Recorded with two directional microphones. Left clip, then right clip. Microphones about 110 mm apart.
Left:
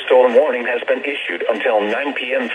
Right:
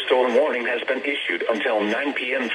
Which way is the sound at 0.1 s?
45° left (ahead or behind).